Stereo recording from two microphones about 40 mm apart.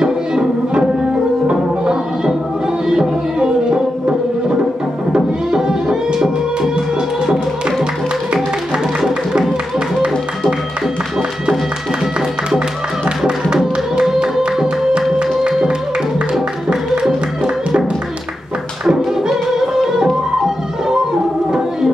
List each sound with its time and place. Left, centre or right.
0.0 s music: centre
5.1 s music: centre
13.5 s music: centre
18.9 s music: centre
21.5 s music: centre